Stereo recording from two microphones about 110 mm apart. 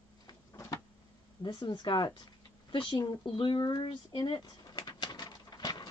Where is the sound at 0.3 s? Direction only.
30° left (ahead or behind).